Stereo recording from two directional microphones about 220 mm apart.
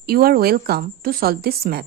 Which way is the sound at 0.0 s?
45° right (ahead or behind).